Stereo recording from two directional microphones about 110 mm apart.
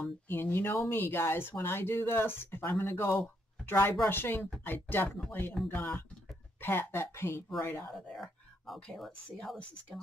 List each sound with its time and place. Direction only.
0.3 s speech: 20° left (ahead or behind)
8.1 s speech: 5° left (ahead or behind)